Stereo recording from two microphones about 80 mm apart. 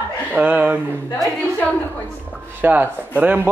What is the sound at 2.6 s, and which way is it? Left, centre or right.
Speech, right.